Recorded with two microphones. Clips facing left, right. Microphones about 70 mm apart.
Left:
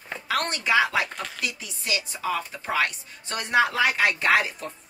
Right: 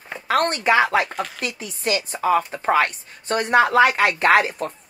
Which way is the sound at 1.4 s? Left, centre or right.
Right.